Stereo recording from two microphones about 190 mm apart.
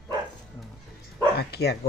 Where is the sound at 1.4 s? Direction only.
60° left (ahead or behind).